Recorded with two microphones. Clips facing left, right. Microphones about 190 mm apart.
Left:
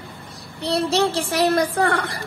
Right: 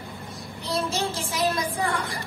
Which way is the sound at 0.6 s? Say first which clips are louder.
Left 7 dB; 70° left (ahead or behind).